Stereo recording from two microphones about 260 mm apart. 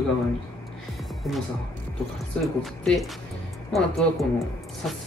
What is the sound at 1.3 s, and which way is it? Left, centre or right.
Speech, centre.